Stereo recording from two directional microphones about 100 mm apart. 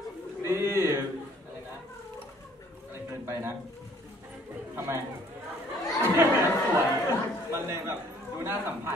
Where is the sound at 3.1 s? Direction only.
25° right (ahead or behind).